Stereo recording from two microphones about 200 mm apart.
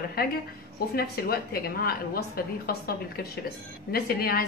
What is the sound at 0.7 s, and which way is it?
A woman's voice, 50° left (ahead or behind).